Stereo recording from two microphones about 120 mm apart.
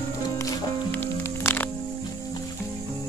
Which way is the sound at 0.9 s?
15° left (ahead or behind).